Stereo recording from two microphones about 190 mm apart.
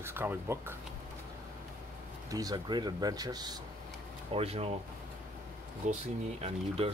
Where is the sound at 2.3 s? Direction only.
20° right (ahead or behind).